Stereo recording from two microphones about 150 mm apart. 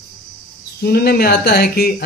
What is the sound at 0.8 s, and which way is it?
Speech, 90° left.